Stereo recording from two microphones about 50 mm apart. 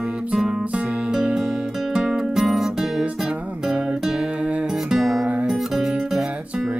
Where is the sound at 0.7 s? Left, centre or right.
Centre.